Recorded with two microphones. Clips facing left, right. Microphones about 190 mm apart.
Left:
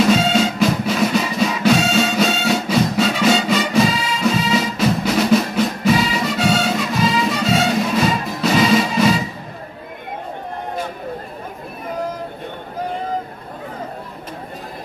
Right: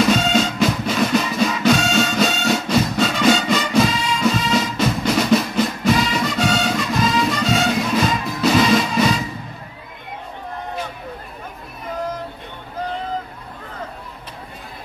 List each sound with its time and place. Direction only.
0.1 s music: 5° left (ahead or behind)